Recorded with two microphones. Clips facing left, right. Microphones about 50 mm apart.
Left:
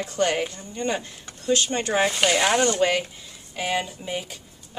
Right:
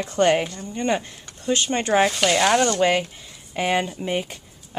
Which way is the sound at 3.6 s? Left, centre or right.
Right.